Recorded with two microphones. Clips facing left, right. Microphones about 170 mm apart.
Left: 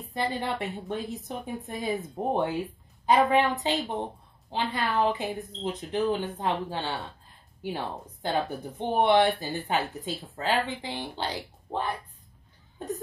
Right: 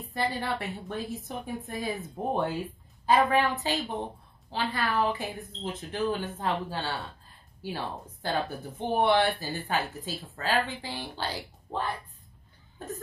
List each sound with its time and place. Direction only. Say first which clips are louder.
0.1 s speech: left 1 dB; 20° left (ahead or behind)
8.2 s speech: left 2 dB; 20° left (ahead or behind)